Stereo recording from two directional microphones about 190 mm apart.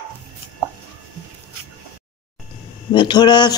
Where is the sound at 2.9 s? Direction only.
25° left (ahead or behind).